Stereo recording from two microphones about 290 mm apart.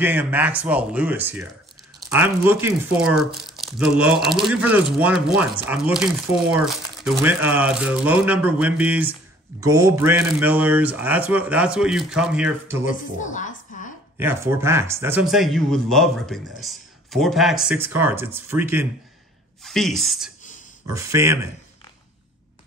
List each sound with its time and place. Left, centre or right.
0.0 s a man's voice: centre
13.2 s a sound: left
14.1 s a man's voice: centre